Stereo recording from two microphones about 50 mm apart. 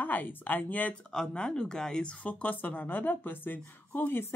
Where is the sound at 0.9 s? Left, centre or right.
Centre.